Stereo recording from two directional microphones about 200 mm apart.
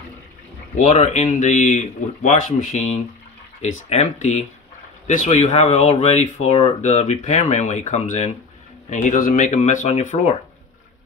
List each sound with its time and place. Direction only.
0.7 s speech: 35° left (ahead or behind)